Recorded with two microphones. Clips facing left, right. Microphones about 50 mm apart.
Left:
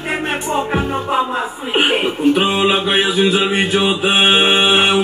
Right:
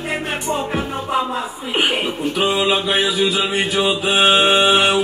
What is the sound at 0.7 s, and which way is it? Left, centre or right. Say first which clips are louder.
Speech: left 3 dB; left.